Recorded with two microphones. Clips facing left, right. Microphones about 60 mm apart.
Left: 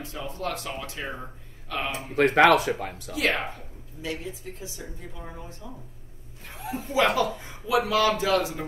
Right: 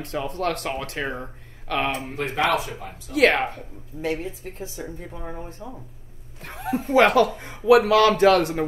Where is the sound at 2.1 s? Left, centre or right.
Left.